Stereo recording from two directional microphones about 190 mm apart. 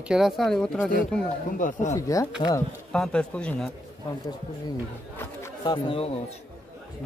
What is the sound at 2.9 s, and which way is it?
Speech, 5° left (ahead or behind).